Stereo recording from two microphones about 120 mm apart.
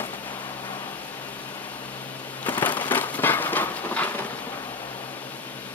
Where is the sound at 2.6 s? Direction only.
15° left (ahead or behind).